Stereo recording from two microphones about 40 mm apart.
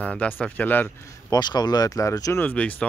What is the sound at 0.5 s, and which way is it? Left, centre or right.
Speech, left.